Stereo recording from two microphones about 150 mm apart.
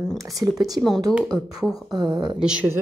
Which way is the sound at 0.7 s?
Centre (ahead or behind).